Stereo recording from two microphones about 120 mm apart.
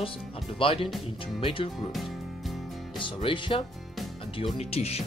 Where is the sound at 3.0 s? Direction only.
45° left (ahead or behind).